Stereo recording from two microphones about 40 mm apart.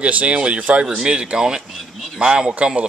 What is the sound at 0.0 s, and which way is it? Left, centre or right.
Speech, right.